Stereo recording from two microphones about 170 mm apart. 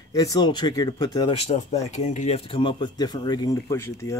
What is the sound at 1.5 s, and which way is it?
Speech, 45° left (ahead or behind).